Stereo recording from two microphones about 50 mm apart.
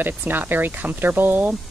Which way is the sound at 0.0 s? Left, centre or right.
Right.